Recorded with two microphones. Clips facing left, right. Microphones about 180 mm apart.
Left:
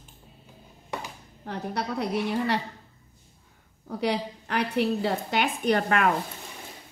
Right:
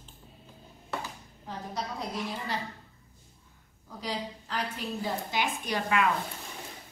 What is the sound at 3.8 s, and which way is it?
A woman's voice, 65° left (ahead or behind).